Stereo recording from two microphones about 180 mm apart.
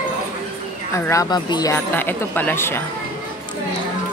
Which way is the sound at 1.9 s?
10° left (ahead or behind).